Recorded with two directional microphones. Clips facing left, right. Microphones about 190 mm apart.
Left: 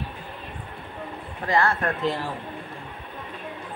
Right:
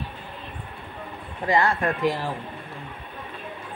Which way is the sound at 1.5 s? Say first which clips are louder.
Right 1 dB; 15° right (ahead or behind).